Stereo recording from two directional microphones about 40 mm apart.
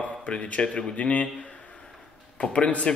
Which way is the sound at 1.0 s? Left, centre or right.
Left.